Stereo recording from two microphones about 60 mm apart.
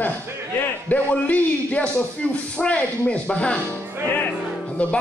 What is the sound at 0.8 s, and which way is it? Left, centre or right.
Speech, left.